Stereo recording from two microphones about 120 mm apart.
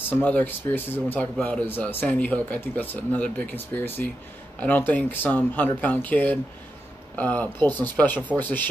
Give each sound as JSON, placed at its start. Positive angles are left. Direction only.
{"t": 0.1, "sound": "speech", "side_deg": 15}